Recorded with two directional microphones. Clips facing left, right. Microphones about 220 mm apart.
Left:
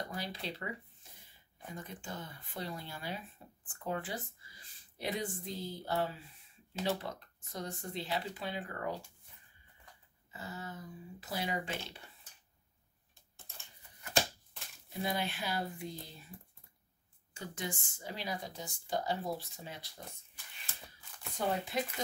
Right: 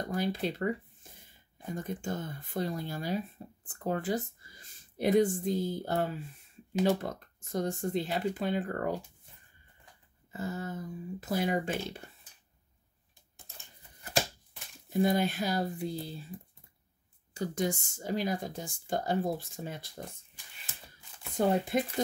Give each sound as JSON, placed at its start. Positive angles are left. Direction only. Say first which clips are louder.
{"t": 0.1, "sound": "speech", "louder": "right 10 dB", "side_deg": -50}
{"t": 1.8, "sound": "speech", "louder": "right 9 dB", "side_deg": -45}
{"t": 10.3, "sound": "speech", "louder": "right 8 dB", "side_deg": -45}
{"t": 14.9, "sound": "speech", "louder": "right 9 dB", "side_deg": -45}
{"t": 17.3, "sound": "speech", "louder": "right 10 dB", "side_deg": -40}
{"t": 21.4, "sound": "speech", "louder": "right 7 dB", "side_deg": -50}